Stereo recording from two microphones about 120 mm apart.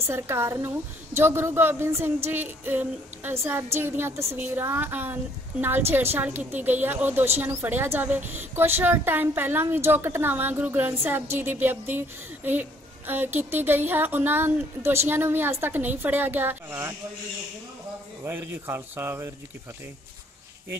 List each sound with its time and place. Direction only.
0.0 s a woman's voice: 20° right (ahead or behind)
18.2 s speech: 20° right (ahead or behind)